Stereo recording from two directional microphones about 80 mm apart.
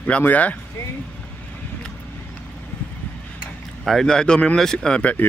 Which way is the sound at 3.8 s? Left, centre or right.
Centre.